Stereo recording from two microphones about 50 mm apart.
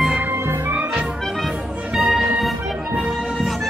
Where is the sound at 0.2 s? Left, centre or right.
Right.